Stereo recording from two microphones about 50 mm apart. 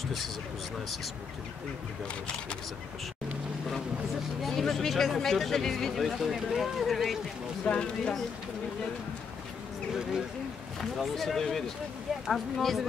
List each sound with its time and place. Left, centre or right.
4.4 s speech: centre
7.6 s speech: centre
10.8 s speech: centre